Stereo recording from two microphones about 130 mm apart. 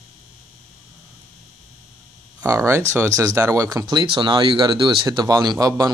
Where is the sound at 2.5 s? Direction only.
20° right (ahead or behind).